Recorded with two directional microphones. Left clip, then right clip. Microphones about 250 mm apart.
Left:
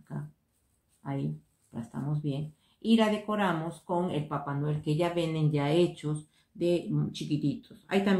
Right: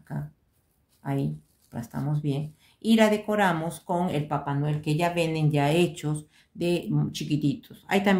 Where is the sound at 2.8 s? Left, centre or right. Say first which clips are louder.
Right 5 dB; right.